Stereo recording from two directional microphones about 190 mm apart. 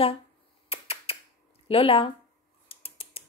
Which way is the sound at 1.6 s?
30° left (ahead or behind).